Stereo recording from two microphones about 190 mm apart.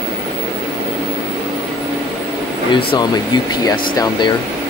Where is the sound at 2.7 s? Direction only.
25° left (ahead or behind).